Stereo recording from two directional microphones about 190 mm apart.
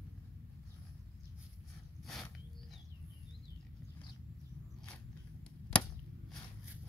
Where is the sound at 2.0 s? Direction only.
Centre (ahead or behind).